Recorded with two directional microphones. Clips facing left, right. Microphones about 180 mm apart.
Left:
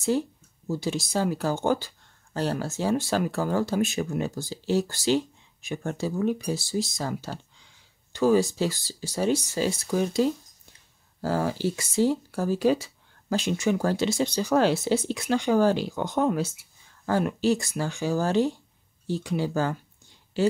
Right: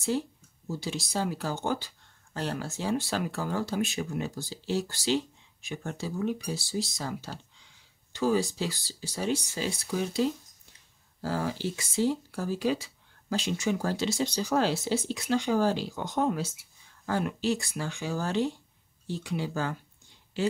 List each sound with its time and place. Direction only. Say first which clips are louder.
0.7 s speech: left 5 dB; 50° left (ahead or behind)
17.0 s speech: left 5 dB; 40° left (ahead or behind)